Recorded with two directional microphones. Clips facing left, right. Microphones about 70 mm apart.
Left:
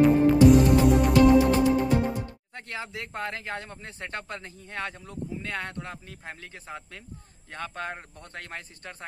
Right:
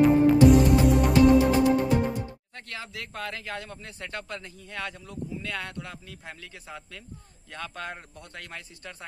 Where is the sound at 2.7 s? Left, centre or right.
Left.